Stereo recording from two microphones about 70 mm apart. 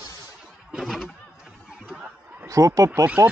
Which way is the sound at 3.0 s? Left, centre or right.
Right.